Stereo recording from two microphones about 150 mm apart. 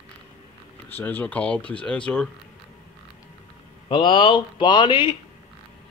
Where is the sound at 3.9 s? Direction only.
35° left (ahead or behind).